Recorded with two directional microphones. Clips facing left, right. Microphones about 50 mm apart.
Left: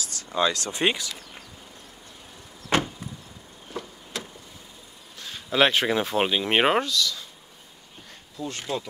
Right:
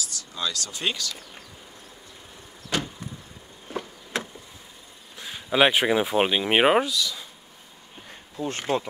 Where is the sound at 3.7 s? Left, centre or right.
Right.